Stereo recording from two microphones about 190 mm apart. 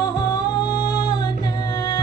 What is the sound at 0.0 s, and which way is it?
Music, 20° left (ahead or behind).